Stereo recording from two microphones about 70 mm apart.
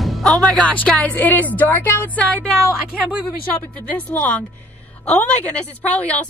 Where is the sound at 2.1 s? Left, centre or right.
Centre.